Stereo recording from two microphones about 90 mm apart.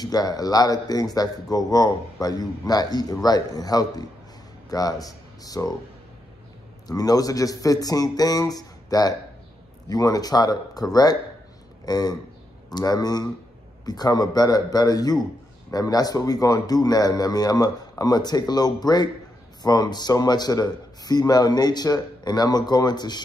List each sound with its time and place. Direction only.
0.0 s speech: 45° left (ahead or behind)
6.9 s speech: 45° left (ahead or behind)